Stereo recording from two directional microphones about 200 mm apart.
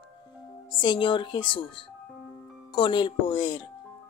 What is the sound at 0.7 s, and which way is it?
Speech, 25° left (ahead or behind).